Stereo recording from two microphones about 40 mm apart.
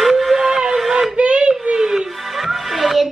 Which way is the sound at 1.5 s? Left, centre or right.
Centre.